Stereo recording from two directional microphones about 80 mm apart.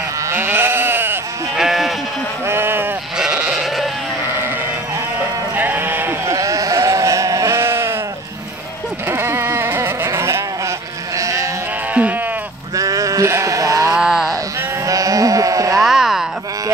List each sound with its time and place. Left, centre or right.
0.3 s sheep: right
1.6 s sheep: centre
2.4 s sheep: right
3.4 s sheep: centre
5.6 s sheep: right
6.2 s sheep: right
9.1 s a sound: right
11.1 s sheep: right
11.9 s sheep: centre
12.7 s sheep: right
13.9 s a sound: centre
14.9 s sheep: right
15.8 s a sound: centre